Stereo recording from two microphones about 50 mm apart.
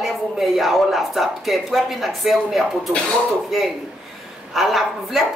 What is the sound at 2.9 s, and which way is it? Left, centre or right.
Speech, centre.